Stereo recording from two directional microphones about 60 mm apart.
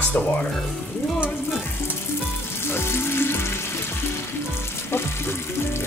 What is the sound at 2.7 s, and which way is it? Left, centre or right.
Frying, left.